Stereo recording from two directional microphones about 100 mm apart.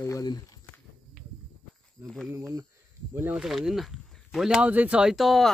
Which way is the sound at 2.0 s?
30° right (ahead or behind).